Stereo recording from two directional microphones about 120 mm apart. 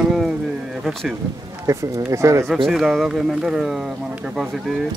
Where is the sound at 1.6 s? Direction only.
25° right (ahead or behind).